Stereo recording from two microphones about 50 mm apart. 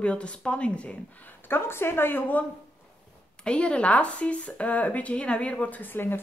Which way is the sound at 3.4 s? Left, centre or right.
Left.